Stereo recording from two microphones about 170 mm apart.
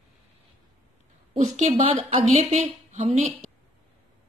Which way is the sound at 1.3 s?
45° right (ahead or behind).